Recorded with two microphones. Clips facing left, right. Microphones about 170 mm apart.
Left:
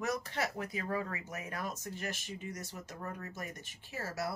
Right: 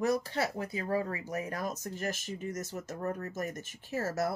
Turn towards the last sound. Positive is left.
turn(degrees=-45)  # may be behind; listen again after turning